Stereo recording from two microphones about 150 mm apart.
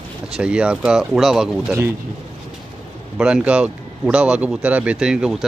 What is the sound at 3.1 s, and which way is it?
Speech, 5° right (ahead or behind).